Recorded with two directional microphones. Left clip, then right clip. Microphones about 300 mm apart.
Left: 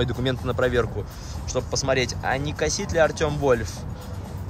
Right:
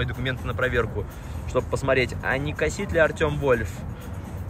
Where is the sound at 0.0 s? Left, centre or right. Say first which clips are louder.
Left 3 dB; centre.